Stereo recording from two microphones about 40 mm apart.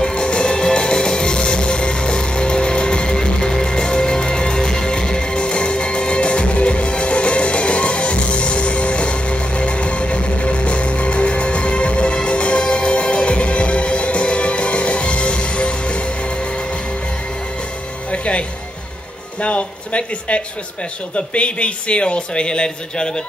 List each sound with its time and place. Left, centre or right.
0.0 s music: left
18.1 s music: left
19.4 s a sound: left
21.3 s a man's voice: left